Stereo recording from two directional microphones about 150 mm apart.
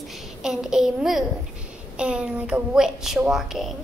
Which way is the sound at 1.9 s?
5° right (ahead or behind).